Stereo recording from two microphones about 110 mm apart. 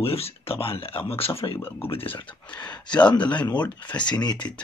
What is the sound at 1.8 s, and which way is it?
Speech, 55° left (ahead or behind).